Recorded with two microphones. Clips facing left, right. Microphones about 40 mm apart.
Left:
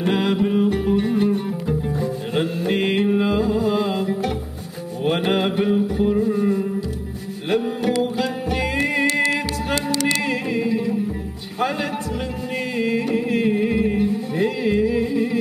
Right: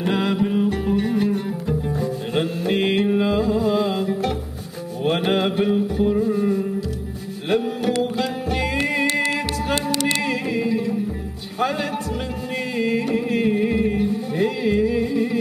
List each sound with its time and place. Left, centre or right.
0.0 s music: centre
9.0 s music: right
10.2 s music: centre
12.7 s music: centre